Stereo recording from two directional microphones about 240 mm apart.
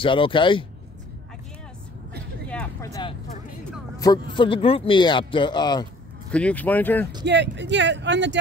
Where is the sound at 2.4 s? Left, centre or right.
Centre.